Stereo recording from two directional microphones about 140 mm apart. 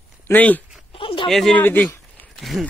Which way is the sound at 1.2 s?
5° left (ahead or behind).